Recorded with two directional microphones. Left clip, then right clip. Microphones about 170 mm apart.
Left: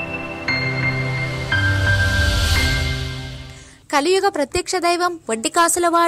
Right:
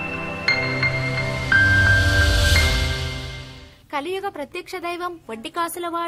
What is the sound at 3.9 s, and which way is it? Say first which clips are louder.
A woman's voice: left 10 dB; 40° left (ahead or behind).